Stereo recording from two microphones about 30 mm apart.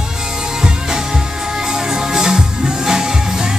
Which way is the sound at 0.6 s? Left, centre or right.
Right.